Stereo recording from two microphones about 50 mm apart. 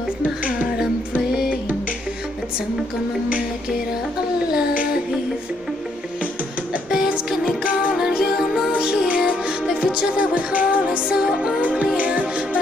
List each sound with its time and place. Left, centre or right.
6.9 s music: centre